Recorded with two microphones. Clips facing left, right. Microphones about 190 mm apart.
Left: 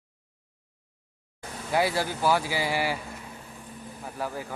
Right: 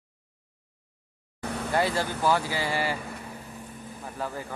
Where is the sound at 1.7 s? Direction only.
10° left (ahead or behind).